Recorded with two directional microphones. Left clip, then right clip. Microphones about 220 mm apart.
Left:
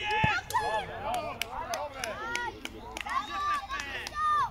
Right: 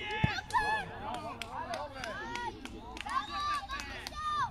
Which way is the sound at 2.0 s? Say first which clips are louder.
Left 5 dB; 30° right (ahead or behind).